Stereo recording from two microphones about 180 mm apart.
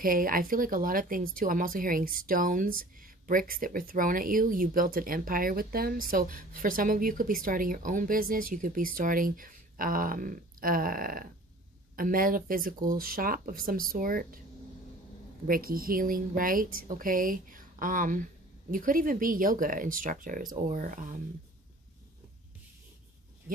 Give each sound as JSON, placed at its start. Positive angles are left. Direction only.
{"t": 0.0, "sound": "speech", "side_deg": -50}
{"t": 15.4, "sound": "speech", "side_deg": -55}